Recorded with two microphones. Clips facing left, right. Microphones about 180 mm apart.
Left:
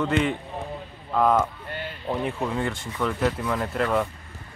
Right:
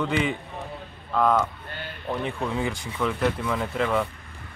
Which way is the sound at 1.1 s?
10° left (ahead or behind).